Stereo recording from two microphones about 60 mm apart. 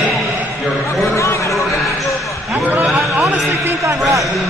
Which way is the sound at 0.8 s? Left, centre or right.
Left.